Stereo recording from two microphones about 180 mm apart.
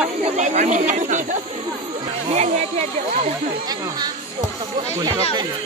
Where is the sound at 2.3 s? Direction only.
40° right (ahead or behind).